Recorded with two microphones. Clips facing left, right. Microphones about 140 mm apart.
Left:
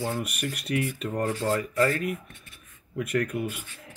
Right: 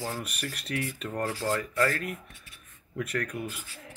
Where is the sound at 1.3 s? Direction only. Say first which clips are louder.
Left 3 dB; 30° left (ahead or behind).